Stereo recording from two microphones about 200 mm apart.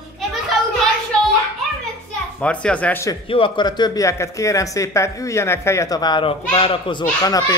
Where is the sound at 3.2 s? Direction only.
25° left (ahead or behind).